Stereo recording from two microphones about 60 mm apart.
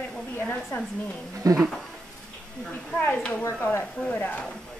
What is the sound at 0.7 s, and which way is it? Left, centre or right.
Speech, left.